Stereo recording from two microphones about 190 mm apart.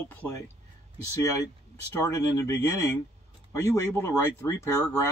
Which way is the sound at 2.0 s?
15° left (ahead or behind).